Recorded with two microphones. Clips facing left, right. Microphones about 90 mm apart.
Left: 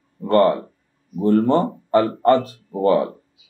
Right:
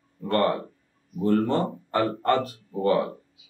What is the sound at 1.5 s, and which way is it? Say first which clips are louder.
Speech: left 8 dB; 30° left (ahead or behind).